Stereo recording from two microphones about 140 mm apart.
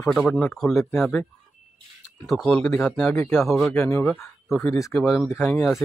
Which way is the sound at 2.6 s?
15° left (ahead or behind).